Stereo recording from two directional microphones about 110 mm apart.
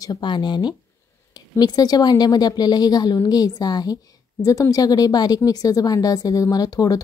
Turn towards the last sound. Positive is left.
turn(degrees=35)  # may be behind; listen again after turning